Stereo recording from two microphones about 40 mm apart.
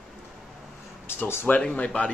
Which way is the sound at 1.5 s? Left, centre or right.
Left.